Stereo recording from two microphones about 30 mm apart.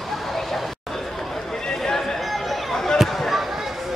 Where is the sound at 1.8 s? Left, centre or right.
Centre.